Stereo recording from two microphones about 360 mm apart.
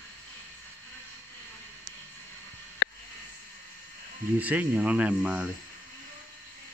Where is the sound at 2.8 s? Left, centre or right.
Left.